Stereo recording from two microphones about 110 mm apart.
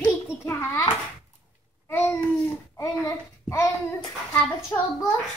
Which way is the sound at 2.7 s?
30° left (ahead or behind).